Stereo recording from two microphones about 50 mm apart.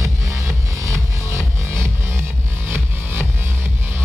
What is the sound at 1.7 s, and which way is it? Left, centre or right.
Music, right.